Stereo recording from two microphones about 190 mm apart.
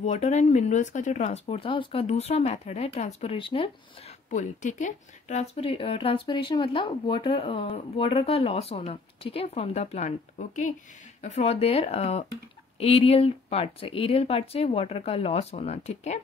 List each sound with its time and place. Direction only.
0.0 s speech: 35° left (ahead or behind)
4.3 s speech: 40° left (ahead or behind)